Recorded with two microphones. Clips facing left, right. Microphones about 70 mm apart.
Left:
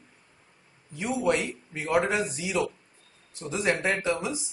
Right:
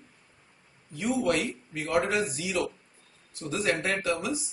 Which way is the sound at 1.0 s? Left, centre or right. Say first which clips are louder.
Left 1 dB; left.